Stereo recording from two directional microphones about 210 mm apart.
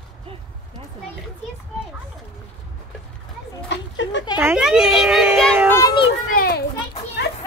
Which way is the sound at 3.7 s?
60° left (ahead or behind).